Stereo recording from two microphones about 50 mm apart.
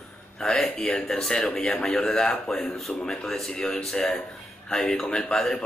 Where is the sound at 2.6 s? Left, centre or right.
Centre.